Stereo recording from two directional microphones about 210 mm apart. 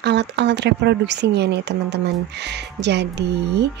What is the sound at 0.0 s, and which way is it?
Speech, 55° right (ahead or behind).